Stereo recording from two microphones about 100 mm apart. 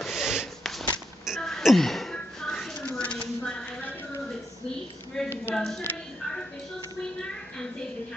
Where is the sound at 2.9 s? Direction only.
10° left (ahead or behind).